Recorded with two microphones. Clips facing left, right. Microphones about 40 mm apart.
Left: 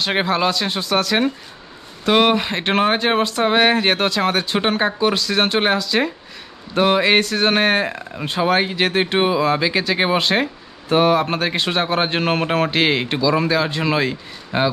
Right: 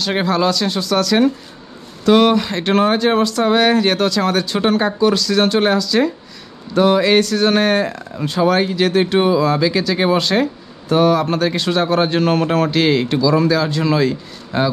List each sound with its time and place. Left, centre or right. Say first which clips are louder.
0.0 s speech: right 2 dB; left